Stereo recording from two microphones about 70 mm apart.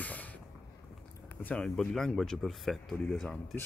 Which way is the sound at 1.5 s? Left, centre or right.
Centre.